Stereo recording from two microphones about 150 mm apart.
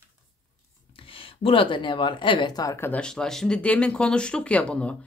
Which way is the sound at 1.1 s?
35° left (ahead or behind).